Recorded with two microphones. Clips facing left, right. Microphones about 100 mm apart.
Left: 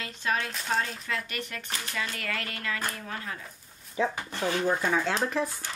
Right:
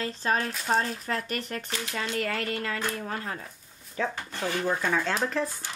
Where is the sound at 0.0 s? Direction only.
35° right (ahead or behind).